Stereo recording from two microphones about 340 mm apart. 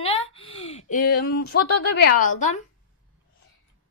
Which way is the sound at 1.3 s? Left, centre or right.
Left.